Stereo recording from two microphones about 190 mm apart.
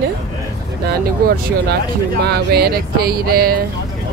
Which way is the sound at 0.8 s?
60° right (ahead or behind).